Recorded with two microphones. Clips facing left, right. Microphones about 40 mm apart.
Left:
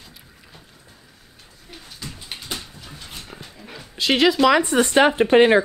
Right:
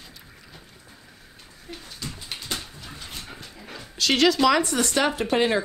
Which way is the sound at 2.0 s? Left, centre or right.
Centre.